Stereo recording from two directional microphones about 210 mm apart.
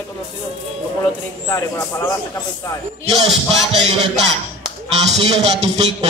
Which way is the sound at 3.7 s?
30° right (ahead or behind).